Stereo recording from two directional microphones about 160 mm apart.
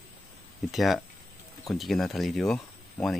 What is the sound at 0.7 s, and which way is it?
Speech, centre (ahead or behind).